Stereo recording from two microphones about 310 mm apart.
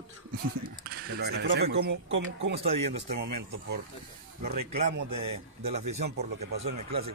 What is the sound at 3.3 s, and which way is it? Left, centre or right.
Speech, right.